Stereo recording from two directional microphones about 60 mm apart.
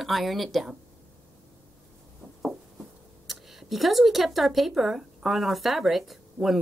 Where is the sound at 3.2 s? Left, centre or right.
Centre.